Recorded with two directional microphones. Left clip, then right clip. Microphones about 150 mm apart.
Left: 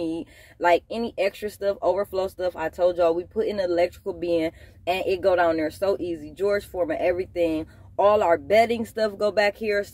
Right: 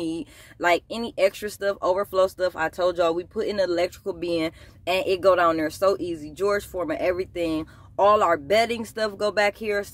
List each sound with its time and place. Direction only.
0.0 s speech: 25° right (ahead or behind)